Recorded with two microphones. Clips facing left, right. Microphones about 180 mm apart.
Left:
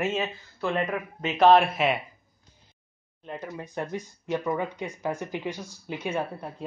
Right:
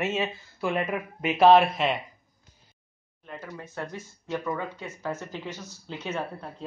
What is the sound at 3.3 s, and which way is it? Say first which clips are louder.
Speech: left 3 dB; 20° left (ahead or behind).